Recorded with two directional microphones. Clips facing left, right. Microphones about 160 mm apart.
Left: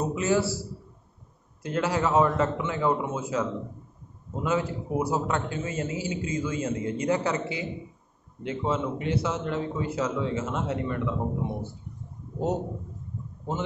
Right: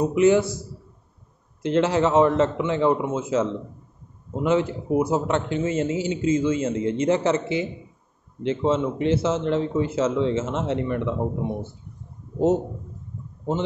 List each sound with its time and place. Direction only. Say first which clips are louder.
0.0 s a man's voice: right 7 dB; 20° right (ahead or behind)